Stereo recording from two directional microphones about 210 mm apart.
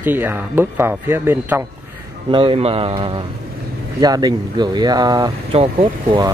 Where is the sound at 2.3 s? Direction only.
25° right (ahead or behind).